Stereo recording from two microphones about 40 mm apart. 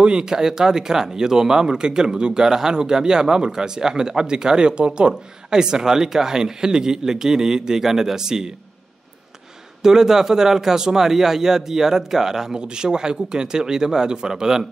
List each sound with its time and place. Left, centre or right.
0.0 s speech: centre
9.8 s speech: centre